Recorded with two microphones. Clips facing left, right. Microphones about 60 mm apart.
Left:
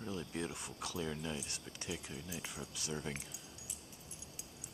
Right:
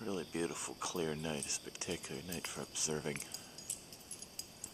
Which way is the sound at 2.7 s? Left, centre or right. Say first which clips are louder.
Right 3 dB; centre.